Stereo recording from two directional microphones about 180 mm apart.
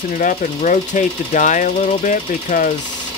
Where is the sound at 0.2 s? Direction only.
45° left (ahead or behind).